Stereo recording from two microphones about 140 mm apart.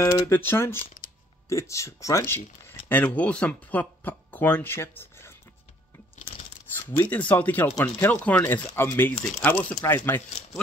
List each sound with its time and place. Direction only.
0.0 s speech: 20° left (ahead or behind)
7.0 s speech: 10° left (ahead or behind)